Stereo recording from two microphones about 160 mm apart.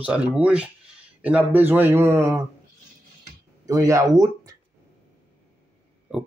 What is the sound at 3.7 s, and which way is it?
Speech, 20° right (ahead or behind).